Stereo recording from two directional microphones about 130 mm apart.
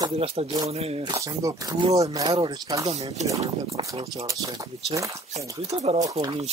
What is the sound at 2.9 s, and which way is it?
Speech, 55° right (ahead or behind).